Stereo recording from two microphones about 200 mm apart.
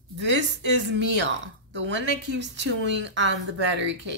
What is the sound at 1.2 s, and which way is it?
Speech, 65° right (ahead or behind).